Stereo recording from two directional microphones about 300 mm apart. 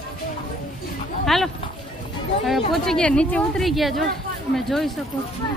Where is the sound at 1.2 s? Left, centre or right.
Centre.